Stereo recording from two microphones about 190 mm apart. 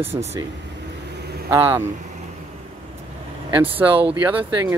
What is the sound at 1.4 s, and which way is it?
Speech, 10° right (ahead or behind).